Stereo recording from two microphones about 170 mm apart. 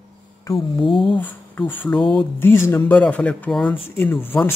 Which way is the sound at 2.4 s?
15° left (ahead or behind).